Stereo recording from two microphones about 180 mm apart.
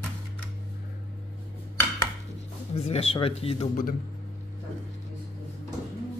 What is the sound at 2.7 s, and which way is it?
Speech, 35° left (ahead or behind).